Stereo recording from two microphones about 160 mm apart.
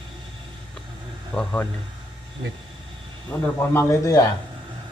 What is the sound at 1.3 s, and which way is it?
Speech, 10° left (ahead or behind).